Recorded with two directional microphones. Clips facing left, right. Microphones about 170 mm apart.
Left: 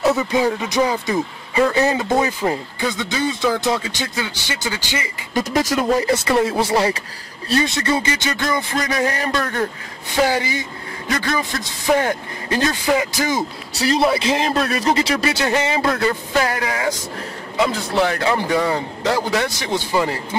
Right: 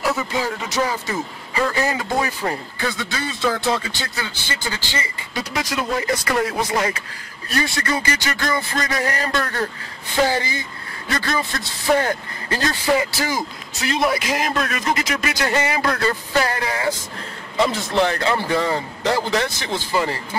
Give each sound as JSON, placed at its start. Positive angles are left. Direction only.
{"t": 0.0, "sound": "speech", "side_deg": 20}
{"t": 5.3, "sound": "speech", "side_deg": 45}
{"t": 13.7, "sound": "speech", "side_deg": 35}
{"t": 15.4, "sound": "speech", "side_deg": 20}